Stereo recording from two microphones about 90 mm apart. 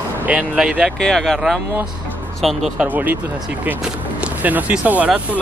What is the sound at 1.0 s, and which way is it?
Speech, 5° left (ahead or behind).